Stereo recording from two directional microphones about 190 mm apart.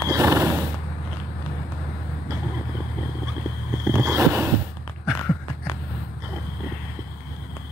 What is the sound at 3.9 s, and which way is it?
Vehicle, 15° right (ahead or behind).